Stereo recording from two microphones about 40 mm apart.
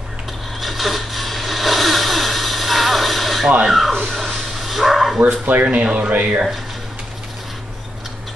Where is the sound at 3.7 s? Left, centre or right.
Centre.